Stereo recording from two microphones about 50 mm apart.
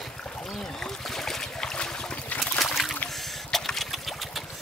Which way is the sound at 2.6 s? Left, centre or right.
Centre.